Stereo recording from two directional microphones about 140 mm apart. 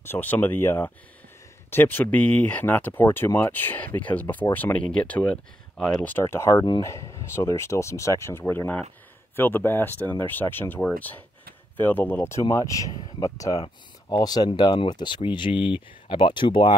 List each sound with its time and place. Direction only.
0.0 s speech: 15° left (ahead or behind); by 16.7 s 35° left (ahead or behind)